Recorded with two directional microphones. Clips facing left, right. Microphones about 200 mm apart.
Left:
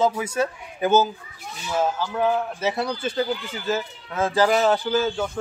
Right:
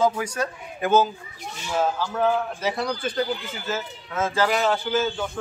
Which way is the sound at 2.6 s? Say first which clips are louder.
Left 1 dB; 25° left (ahead or behind).